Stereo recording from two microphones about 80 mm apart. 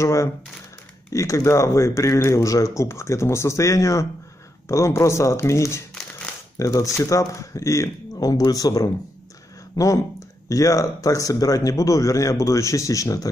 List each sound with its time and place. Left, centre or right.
0.0 s speech: left
9.8 s speech: left